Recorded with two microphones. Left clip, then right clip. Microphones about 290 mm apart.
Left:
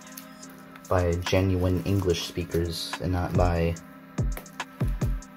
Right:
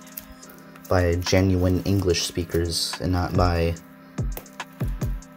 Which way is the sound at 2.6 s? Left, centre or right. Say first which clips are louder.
Right 5 dB; centre.